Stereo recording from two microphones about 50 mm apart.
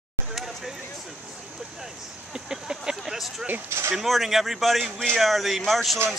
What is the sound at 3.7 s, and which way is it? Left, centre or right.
Speech, right.